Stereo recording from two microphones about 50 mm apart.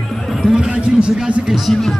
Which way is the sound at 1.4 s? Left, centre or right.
Centre.